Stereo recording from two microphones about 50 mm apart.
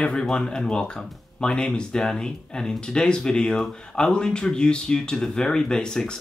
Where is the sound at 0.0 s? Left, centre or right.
Centre.